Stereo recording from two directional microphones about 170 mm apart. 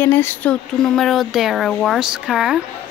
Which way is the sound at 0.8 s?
Centre (ahead or behind).